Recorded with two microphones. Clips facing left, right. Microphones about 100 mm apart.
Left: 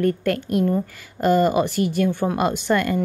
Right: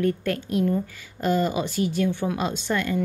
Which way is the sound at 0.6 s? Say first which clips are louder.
Left 3 dB; 40° left (ahead or behind).